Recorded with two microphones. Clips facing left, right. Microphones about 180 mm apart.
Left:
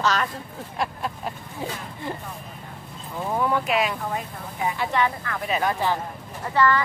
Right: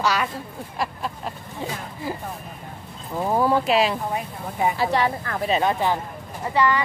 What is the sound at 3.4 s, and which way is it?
Speech, 35° right (ahead or behind).